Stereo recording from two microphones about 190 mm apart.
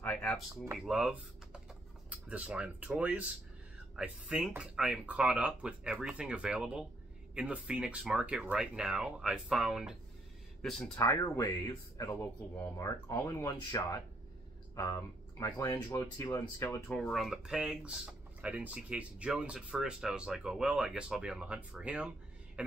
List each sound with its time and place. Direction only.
0.0 s speech: 5° left (ahead or behind)
11.0 s speech: 15° left (ahead or behind); by 22.1 s 5° right (ahead or behind)
22.6 s a sound: 5° right (ahead or behind)